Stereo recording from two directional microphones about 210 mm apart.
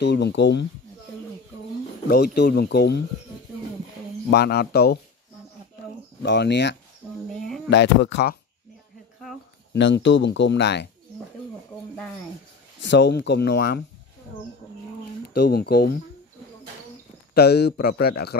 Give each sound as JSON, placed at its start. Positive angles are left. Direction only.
{"t": 0.0, "sound": "speech", "side_deg": 55}
{"t": 2.0, "sound": "a man's voice", "side_deg": 50}
{"t": 4.3, "sound": "a man's voice", "side_deg": 50}
{"t": 6.2, "sound": "speech", "side_deg": 55}
{"t": 7.4, "sound": "a sound", "side_deg": 0}
{"t": 7.7, "sound": "speech", "side_deg": 55}
{"t": 9.8, "sound": "speech", "side_deg": 60}
{"t": 12.8, "sound": "a man's voice", "side_deg": 55}
{"t": 15.2, "sound": "a man's voice", "side_deg": 50}
{"t": 17.3, "sound": "a man's voice", "side_deg": 50}